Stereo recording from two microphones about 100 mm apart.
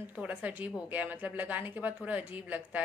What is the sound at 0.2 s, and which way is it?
A woman's voice, 15° right (ahead or behind).